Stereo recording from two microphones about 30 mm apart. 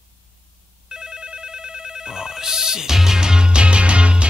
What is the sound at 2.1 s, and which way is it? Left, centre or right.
Music, right.